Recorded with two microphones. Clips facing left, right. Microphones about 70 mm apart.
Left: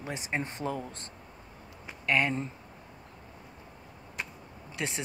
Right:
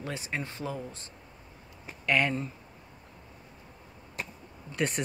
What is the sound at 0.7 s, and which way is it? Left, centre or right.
Speech, left.